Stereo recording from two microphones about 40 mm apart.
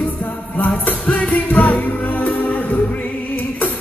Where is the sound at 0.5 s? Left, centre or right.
Left.